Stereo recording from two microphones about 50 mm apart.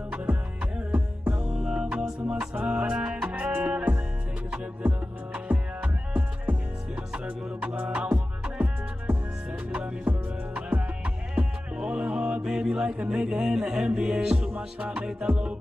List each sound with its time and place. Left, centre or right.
0.9 s music: right
7.7 s music: right
12.4 s music: centre